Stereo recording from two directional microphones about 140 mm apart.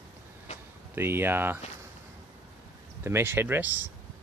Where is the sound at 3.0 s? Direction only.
15° right (ahead or behind).